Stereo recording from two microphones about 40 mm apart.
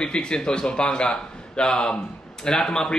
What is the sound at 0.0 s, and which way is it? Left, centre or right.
A man's voice, left.